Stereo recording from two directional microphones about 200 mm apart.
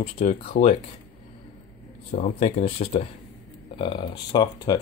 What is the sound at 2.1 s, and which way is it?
Speech, 35° left (ahead or behind).